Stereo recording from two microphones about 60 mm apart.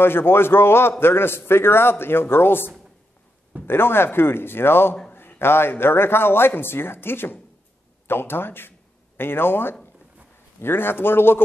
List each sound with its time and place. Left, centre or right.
0.0 s a man's voice: left